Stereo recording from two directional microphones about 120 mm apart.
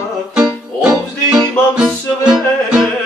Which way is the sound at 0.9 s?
35° right (ahead or behind).